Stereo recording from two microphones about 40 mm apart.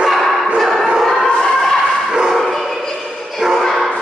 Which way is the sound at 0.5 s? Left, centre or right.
Centre.